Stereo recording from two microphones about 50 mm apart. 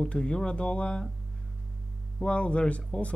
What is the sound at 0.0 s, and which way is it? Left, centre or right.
Speech, centre.